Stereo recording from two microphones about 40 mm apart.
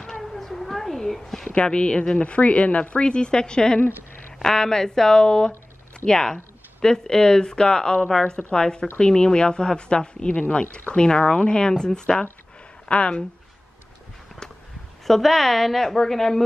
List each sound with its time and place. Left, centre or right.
0.2 s a sound: centre
1.5 s a woman's voice: left
15.0 s a woman's voice: centre